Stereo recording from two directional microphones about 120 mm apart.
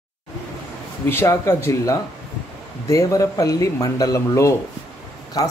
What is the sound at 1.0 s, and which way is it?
Speech, 20° left (ahead or behind).